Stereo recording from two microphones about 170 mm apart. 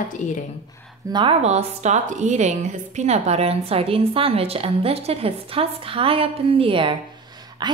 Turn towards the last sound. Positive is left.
turn(degrees=-25)  # may be behind; listen again after turning